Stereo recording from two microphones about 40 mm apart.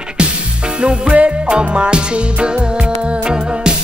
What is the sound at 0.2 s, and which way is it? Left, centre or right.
Music, right.